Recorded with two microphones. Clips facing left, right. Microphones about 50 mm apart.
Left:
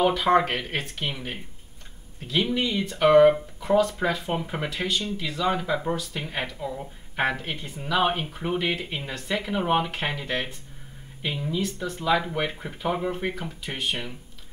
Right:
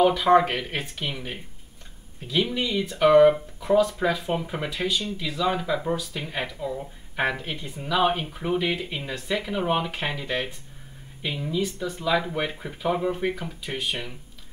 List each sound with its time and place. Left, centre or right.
0.0 s speech: centre